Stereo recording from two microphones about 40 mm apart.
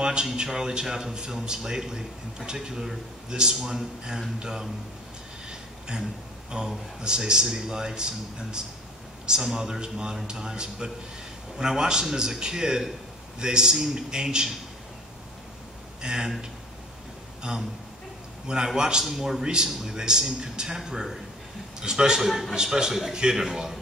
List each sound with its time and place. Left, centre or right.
0.0 s a sound: right
0.4 s a man's voice: centre
5.5 s a sound: right
6.5 s a man's voice: right
16.0 s a man's voice: centre
18.8 s a man's voice: centre
19.4 s a man's voice: right